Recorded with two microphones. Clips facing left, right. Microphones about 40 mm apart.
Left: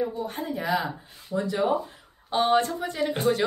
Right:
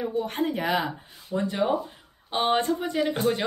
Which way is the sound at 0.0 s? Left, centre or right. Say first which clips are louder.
Right 3 dB; right.